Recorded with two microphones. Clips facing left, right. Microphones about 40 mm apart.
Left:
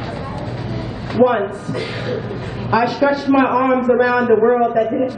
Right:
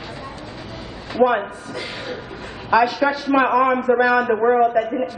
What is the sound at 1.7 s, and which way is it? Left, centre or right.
Music, centre.